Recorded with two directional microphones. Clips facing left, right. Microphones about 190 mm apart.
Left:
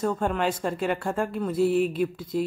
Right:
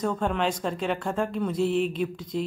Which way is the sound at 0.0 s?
5° left (ahead or behind).